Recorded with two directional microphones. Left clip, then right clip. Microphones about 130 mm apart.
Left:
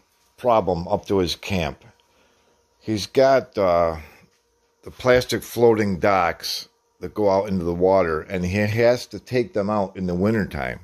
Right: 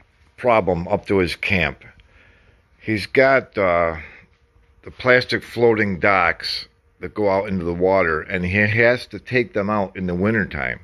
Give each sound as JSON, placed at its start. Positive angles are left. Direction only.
{"t": 0.4, "sound": "speech", "side_deg": 0}